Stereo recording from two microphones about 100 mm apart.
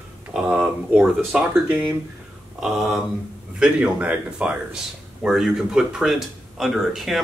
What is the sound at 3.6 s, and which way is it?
Speech, 10° right (ahead or behind).